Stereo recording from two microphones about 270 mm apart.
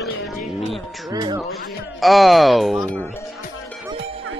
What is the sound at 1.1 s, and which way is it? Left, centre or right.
Speech, centre.